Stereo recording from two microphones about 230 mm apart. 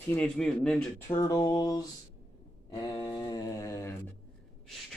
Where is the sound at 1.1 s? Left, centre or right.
Centre.